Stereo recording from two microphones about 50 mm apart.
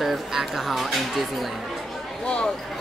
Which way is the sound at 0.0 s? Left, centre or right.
Centre.